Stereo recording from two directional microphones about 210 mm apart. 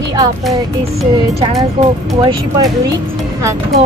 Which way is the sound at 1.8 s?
25° right (ahead or behind).